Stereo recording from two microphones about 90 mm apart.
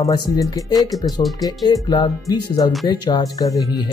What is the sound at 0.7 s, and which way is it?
Speech, centre (ahead or behind).